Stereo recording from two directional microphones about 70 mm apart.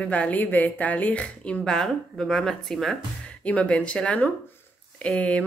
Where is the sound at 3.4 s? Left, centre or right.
Centre.